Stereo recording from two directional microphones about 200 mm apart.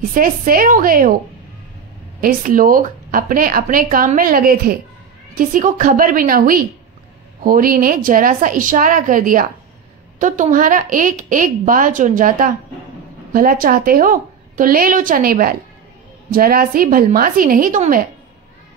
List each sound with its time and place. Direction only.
0.1 s speech: 45° right (ahead or behind)
2.2 s a woman's voice: 45° right (ahead or behind)